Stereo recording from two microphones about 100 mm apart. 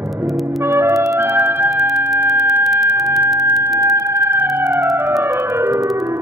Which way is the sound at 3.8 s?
35° right (ahead or behind).